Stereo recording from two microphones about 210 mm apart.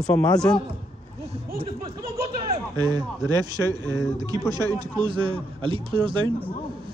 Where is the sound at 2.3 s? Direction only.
25° right (ahead or behind).